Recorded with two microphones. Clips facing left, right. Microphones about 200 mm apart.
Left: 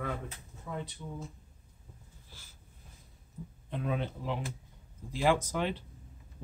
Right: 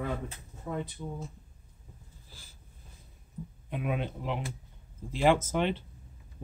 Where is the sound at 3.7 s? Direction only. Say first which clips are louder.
Right 1 dB; 10° right (ahead or behind).